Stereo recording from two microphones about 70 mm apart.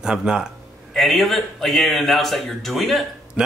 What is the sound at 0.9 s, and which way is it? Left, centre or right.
A man's voice, centre.